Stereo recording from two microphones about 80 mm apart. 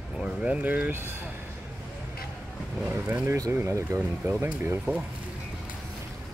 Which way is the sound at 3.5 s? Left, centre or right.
Right.